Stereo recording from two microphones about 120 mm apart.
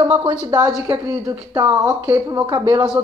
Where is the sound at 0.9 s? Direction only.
25° right (ahead or behind).